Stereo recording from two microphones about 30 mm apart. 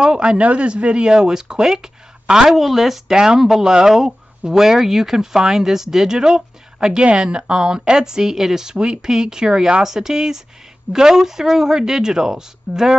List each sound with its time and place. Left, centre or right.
0.0 s speech: right
0.4 s speech: right
1.0 s speech: right
2.5 s speech: centre
7.2 s speech: right; by 8.6 s centre
8.7 s speech: right
9.0 s speech: centre